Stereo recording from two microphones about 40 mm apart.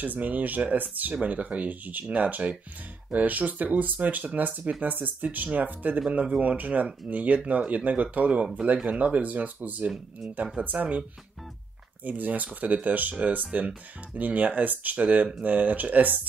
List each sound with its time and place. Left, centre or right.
0.0 s speech: right
12.0 s speech: right